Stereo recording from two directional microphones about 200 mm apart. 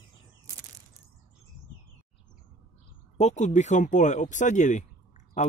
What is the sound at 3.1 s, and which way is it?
Speech, 35° left (ahead or behind).